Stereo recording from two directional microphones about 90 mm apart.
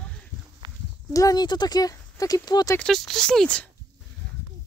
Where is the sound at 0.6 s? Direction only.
60° right (ahead or behind).